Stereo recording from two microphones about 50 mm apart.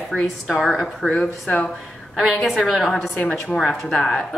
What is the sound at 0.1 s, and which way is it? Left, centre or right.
A woman's voice, centre.